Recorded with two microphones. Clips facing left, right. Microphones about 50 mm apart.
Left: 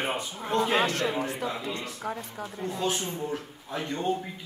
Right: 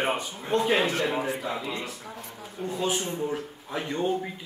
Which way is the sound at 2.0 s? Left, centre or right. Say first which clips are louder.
Left 6 dB; left.